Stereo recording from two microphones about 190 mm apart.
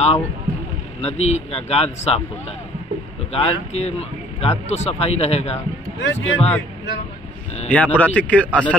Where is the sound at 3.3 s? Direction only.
30° left (ahead or behind).